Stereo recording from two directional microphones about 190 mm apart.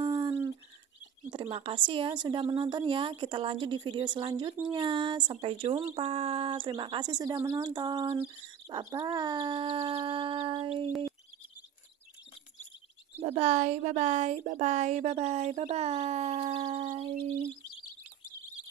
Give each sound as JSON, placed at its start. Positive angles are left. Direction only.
{"t": 0.0, "sound": "bird", "side_deg": -25}
{"t": 1.3, "sound": "speech", "side_deg": -30}
{"t": 13.2, "sound": "a woman's voice", "side_deg": -35}